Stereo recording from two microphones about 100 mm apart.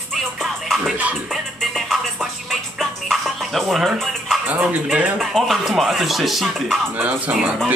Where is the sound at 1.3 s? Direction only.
Centre (ahead or behind).